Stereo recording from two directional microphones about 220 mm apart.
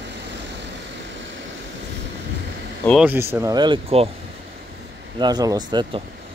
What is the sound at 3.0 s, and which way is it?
Speech, 10° right (ahead or behind).